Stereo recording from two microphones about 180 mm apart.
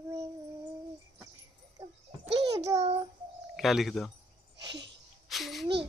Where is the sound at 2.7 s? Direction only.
30° right (ahead or behind).